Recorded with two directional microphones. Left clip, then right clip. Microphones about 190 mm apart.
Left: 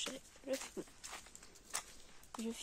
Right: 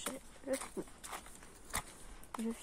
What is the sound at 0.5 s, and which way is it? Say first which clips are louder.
Livestock: right 2 dB; 25° left (ahead or behind).